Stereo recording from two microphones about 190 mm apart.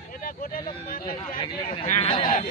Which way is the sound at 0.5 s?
50° left (ahead or behind).